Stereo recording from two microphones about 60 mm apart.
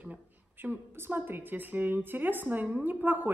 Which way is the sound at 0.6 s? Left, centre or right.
Right.